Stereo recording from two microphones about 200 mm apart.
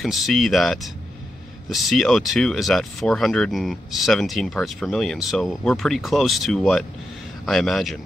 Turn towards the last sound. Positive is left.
turn(degrees=0)  # may be behind; listen again after turning